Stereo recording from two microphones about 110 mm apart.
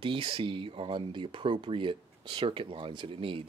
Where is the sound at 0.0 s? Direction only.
50° right (ahead or behind).